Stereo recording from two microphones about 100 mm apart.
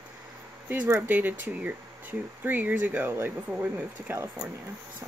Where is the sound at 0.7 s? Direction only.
25° right (ahead or behind).